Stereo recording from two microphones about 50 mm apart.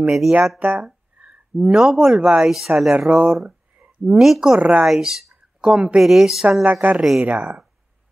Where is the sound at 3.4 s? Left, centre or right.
Centre.